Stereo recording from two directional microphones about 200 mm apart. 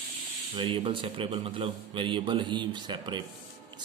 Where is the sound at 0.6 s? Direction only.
25° right (ahead or behind).